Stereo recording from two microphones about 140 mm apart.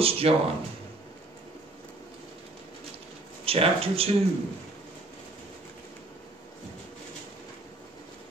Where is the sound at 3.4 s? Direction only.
45° right (ahead or behind).